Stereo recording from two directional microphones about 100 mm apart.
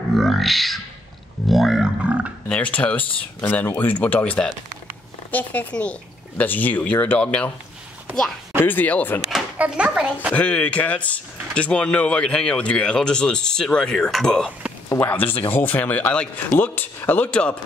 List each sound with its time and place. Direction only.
0.1 s grunt: centre (ahead or behind)
2.5 s speech: 15° left (ahead or behind)
8.6 s speech: 15° left (ahead or behind)
9.6 s a child's voice: 10° right (ahead or behind)
10.3 s speech: 15° left (ahead or behind)
15.0 s speech: 20° left (ahead or behind)